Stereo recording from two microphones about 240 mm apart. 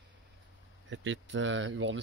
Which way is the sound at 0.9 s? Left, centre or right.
Right.